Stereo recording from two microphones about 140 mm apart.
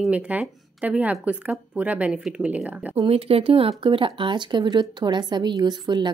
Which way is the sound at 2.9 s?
45° right (ahead or behind).